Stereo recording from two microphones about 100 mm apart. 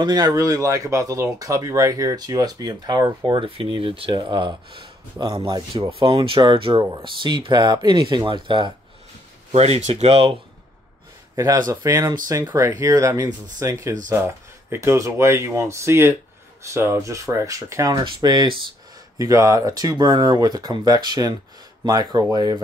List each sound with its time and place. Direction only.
0.0 s speech: 40° right (ahead or behind)
3.3 s speech: 60° right (ahead or behind)
9.5 s speech: 90° right
11.3 s speech: 35° right (ahead or behind)
17.9 s speech: 45° right (ahead or behind)
19.1 s speech: 35° right (ahead or behind)